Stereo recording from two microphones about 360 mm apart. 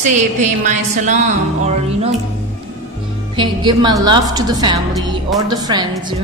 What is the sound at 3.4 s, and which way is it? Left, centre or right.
A woman's voice, centre.